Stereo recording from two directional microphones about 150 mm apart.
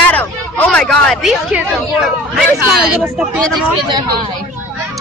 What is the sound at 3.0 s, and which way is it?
Speech, 10° right (ahead or behind).